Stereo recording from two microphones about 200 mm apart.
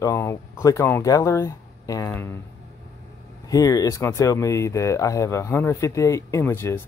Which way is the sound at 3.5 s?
15° left (ahead or behind).